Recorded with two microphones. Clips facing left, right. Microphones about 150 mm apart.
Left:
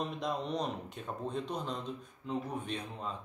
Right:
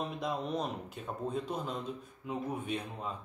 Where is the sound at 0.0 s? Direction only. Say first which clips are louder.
Even; 5° right (ahead or behind).